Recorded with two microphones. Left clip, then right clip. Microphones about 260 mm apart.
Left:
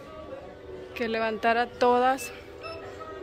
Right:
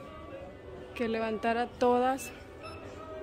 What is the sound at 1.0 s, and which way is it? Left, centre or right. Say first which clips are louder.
Speech: left 4 dB; centre.